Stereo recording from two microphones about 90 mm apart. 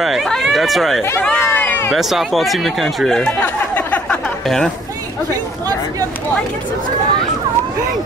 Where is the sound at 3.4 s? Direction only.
15° left (ahead or behind).